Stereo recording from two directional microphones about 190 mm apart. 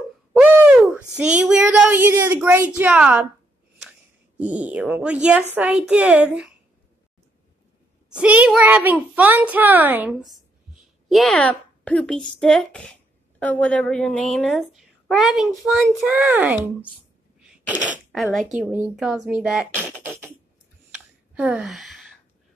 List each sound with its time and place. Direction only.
0.3 s a sound: 10° right (ahead or behind)
2.8 s a child's voice: 5° right (ahead or behind)
4.4 s a child's voice: 5° right (ahead or behind)
8.1 s a child's voice: 5° right (ahead or behind)
17.4 s sneeze: 5° right (ahead or behind)
18.2 s a woman's voice: centre (ahead or behind)
18.6 s a woman's voice: 10° right (ahead or behind)
20.1 s a sound: 10° right (ahead or behind)
21.4 s a woman's voice: 5° right (ahead or behind)